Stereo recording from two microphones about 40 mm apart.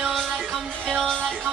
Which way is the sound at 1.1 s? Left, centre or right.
Centre.